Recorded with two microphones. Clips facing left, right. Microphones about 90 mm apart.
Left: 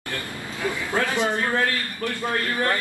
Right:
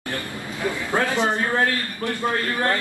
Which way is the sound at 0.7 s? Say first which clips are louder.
Right 2 dB; 20° right (ahead or behind).